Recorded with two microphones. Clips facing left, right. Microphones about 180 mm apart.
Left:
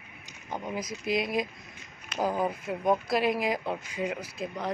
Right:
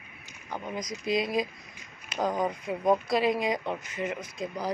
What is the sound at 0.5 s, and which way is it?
Speech, 10° left (ahead or behind).